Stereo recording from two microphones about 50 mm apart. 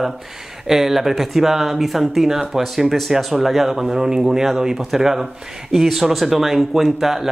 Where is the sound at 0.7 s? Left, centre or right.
Centre.